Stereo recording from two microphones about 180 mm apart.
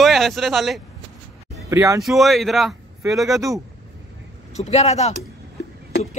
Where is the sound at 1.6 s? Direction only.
15° right (ahead or behind).